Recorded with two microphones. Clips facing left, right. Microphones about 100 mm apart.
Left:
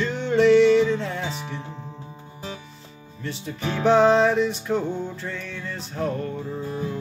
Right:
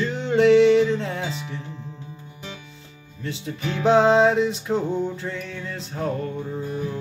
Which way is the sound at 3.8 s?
20° right (ahead or behind).